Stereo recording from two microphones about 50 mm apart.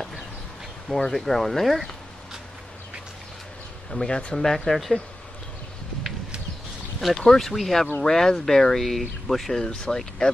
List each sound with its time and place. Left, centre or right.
0.8 s speech: centre
3.9 s speech: centre
4.4 s speech: centre
7.0 s speech: centre